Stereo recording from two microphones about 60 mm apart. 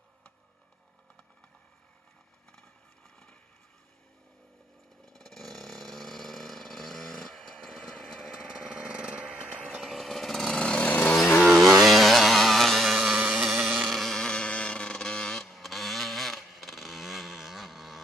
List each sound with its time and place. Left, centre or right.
5.0 s vehicle: centre
8.5 s engine: centre
9.2 s a sound: centre
10.6 s chainsaw: left
11.4 s chainsaw: centre
13.2 s a sound: centre
13.5 s insect: centre
13.9 s vehicle: centre